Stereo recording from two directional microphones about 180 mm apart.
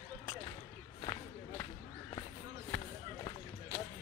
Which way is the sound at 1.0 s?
20° left (ahead or behind).